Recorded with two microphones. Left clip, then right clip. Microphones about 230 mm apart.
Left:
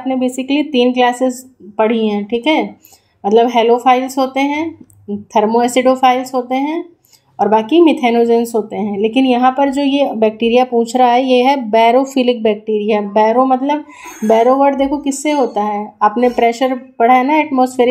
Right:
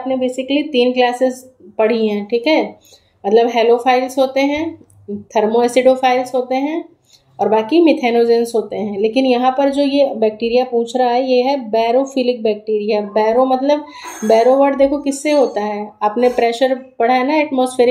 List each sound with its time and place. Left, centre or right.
0.1 s a woman's voice: left
11.1 s a woman's voice: centre
11.7 s speech: centre